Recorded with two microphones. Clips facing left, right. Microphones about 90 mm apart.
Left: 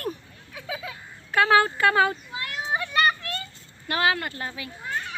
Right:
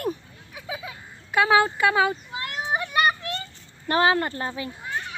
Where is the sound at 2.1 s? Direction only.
25° right (ahead or behind).